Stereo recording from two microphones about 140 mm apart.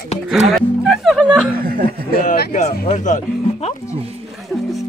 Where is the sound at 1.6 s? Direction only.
90° right.